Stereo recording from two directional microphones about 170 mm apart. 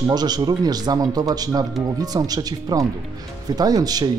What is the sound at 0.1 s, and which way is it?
Speech, 25° right (ahead or behind).